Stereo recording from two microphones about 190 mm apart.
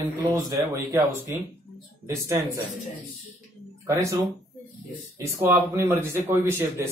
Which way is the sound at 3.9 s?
15° right (ahead or behind).